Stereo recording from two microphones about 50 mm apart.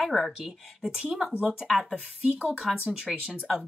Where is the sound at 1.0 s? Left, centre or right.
Centre.